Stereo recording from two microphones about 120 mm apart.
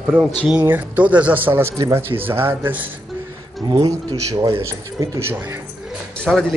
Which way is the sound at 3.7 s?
30° right (ahead or behind).